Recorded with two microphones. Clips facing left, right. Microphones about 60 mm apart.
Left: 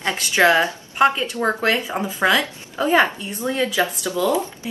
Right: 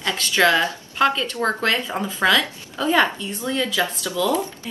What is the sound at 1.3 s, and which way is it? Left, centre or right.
Speech, centre.